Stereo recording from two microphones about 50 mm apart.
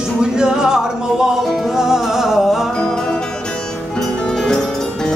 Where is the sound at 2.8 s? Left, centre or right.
Centre.